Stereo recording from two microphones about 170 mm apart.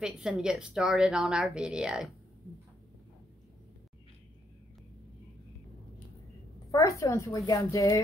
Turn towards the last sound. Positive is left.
turn(degrees=20)  # may be behind; listen again after turning